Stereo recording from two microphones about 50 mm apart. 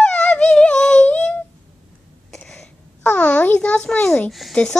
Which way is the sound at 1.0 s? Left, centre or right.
Left.